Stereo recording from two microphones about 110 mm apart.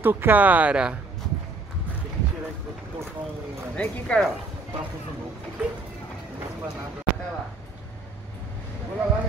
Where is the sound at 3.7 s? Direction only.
10° left (ahead or behind).